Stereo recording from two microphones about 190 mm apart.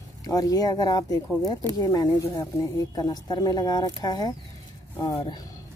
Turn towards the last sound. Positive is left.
turn(degrees=20)  # may be behind; listen again after turning